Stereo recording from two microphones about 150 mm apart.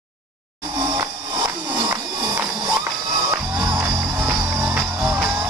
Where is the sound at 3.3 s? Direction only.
20° right (ahead or behind).